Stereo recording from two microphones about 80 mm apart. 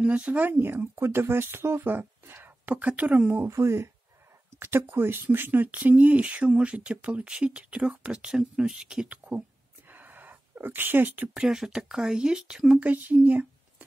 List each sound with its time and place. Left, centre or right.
0.0 s speech: centre
9.8 s a sound: right
11.3 s speech: centre
12.8 s speech: right